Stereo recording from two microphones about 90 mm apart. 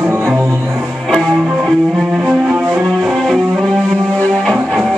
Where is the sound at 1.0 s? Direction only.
Centre (ahead or behind).